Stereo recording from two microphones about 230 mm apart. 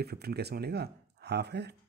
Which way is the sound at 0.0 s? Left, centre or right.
Right.